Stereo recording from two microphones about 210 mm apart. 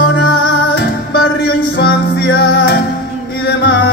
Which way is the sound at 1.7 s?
50° left (ahead or behind).